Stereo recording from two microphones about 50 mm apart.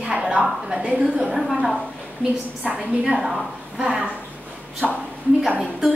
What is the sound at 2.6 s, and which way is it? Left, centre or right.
Speech, right.